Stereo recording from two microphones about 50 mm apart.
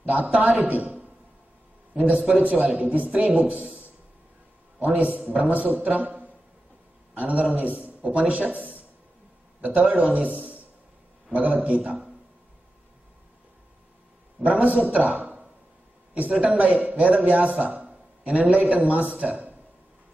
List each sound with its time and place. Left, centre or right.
0.0 s a man's voice: right
2.4 s a man's voice: right
14.4 s a man's voice: right